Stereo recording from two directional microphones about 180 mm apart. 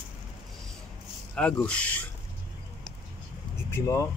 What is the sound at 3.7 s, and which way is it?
Speech, 15° left (ahead or behind).